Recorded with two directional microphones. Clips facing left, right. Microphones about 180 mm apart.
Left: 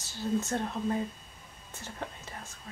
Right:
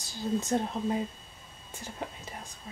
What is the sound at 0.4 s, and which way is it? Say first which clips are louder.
Speech: right 2 dB; 15° right (ahead or behind).